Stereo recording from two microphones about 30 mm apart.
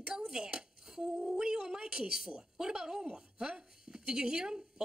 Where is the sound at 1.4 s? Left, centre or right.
Right.